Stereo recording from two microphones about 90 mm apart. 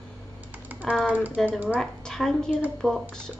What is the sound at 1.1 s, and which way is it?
Speech, 15° right (ahead or behind).